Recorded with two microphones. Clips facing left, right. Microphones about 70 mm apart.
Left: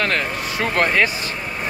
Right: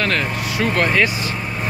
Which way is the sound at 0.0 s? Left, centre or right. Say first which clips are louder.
Right 1 dB; left.